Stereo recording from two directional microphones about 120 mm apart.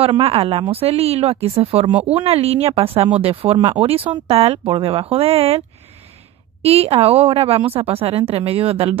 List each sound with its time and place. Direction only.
0.0 s a woman's voice: 55° right (ahead or behind)
6.6 s a woman's voice: 55° right (ahead or behind)